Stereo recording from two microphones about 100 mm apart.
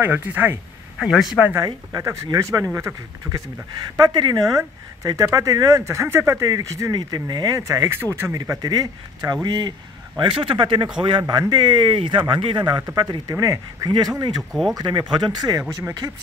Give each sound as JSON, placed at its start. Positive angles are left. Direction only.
{"t": 0.0, "sound": "speech", "side_deg": -20}
{"t": 0.9, "sound": "a man's voice", "side_deg": -5}
{"t": 1.5, "sound": "speech", "side_deg": -30}
{"t": 3.9, "sound": "a man's voice", "side_deg": -45}
{"t": 4.6, "sound": "a man's voice", "side_deg": -35}
{"t": 13.3, "sound": "speech", "side_deg": -35}